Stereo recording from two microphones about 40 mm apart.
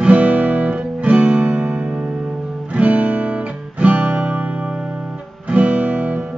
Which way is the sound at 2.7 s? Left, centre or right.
Right.